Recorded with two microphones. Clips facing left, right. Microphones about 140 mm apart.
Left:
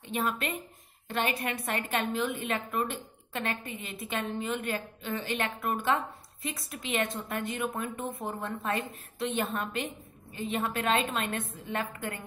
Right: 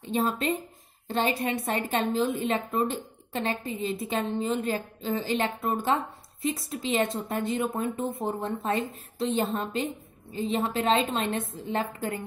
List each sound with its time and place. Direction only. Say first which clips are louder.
0.0 s a woman's voice: right 5 dB; 30° right (ahead or behind)